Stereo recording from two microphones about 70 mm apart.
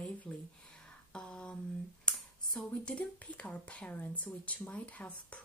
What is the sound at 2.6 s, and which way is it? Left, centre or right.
Speech, centre.